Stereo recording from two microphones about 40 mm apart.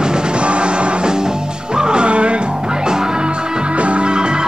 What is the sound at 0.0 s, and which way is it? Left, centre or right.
Music, right.